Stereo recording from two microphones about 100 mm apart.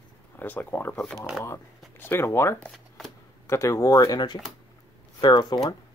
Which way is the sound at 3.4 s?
30° left (ahead or behind).